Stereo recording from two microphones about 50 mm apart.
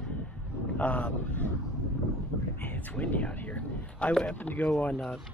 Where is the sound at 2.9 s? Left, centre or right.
Left.